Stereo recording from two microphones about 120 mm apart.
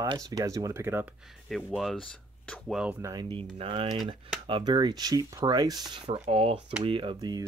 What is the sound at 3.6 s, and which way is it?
Speech, 50° right (ahead or behind).